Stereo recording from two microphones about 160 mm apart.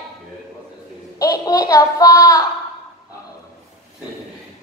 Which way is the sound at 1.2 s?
20° left (ahead or behind).